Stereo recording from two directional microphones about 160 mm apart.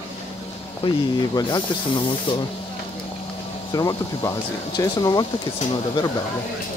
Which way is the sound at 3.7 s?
20° left (ahead or behind).